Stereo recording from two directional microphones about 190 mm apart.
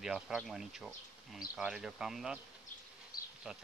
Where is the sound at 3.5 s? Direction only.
5° right (ahead or behind).